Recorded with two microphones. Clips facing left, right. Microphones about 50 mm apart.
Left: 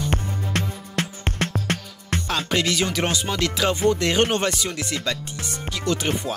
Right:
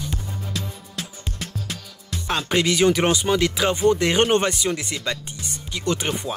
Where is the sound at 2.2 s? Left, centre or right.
Centre.